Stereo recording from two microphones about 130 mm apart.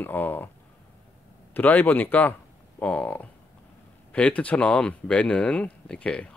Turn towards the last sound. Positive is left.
turn(degrees=10)  # may be behind; listen again after turning